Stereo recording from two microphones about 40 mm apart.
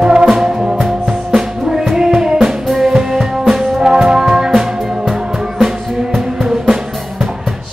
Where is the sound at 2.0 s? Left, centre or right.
Centre.